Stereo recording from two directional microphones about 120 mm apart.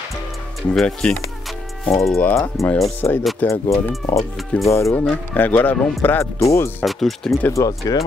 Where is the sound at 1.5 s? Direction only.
Centre (ahead or behind).